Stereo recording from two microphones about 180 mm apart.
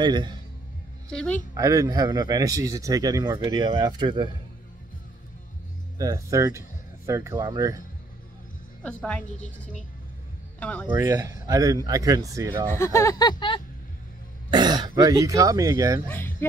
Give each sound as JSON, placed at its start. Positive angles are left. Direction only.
{"t": 0.0, "sound": "speech", "side_deg": -25}
{"t": 1.1, "sound": "a woman's voice", "side_deg": 5}
{"t": 1.5, "sound": "speech", "side_deg": -15}
{"t": 5.9, "sound": "speech", "side_deg": -20}
{"t": 8.8, "sound": "speech", "side_deg": 5}
{"t": 10.6, "sound": "speech", "side_deg": 10}
{"t": 10.9, "sound": "speech", "side_deg": -20}
{"t": 12.6, "sound": "speech", "side_deg": 15}
{"t": 14.5, "sound": "speech", "side_deg": -25}
{"t": 16.1, "sound": "speech", "side_deg": 10}